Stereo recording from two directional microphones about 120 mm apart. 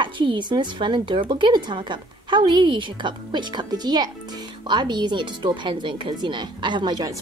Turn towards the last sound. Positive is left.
turn(degrees=-40)  # may be behind; listen again after turning